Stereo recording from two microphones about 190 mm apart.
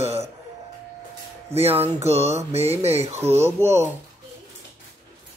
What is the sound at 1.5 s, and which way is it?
Speech, 30° right (ahead or behind).